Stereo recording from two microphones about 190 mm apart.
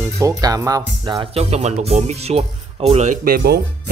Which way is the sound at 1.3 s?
35° right (ahead or behind).